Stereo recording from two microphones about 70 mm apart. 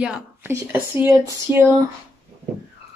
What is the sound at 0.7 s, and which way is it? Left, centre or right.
Speech, right.